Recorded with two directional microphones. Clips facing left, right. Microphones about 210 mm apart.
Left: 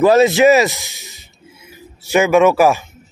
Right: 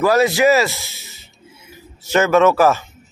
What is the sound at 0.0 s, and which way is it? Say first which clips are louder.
Speech: left 4 dB; 20° left (ahead or behind).